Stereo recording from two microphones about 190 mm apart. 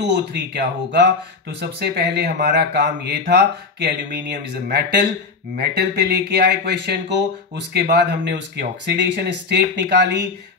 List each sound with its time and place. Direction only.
0.0 s speech: 65° right (ahead or behind)